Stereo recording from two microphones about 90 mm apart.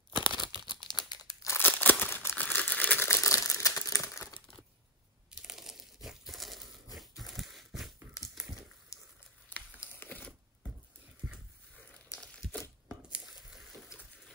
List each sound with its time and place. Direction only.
0.2 s crumpling: 60° left (ahead or behind)
1.4 s crumpling: 25° left (ahead or behind)
5.4 s crumpling: 5° right (ahead or behind)
8.9 s a sound: 35° left (ahead or behind)
9.8 s crumpling: 25° left (ahead or behind)
13.1 s a sound: 5° right (ahead or behind)